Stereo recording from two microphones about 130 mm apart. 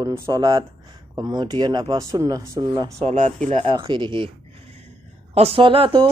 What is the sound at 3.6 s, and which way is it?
Speech, 35° right (ahead or behind).